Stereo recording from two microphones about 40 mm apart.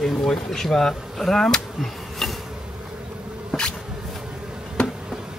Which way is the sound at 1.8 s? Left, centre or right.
Centre.